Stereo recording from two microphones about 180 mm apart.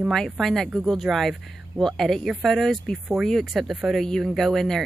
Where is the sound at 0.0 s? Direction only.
Centre (ahead or behind).